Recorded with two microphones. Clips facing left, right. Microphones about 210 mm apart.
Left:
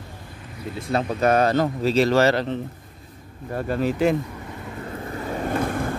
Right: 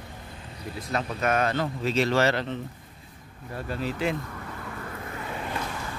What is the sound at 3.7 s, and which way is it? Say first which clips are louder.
Speech: left 8 dB; 50° left (ahead or behind).